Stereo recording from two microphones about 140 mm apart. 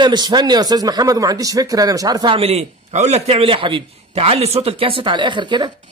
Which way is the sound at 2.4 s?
45° right (ahead or behind).